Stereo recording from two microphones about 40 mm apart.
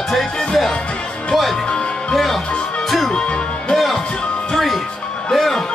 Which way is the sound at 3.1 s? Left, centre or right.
Left.